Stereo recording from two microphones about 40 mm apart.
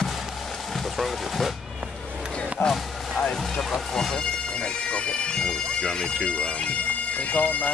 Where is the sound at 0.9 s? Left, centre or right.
Centre.